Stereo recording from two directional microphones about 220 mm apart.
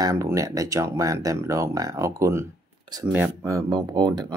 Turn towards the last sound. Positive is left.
turn(degrees=-20)  # may be behind; listen again after turning